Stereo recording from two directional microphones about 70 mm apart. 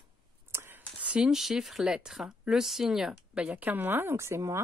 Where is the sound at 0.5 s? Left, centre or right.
Right.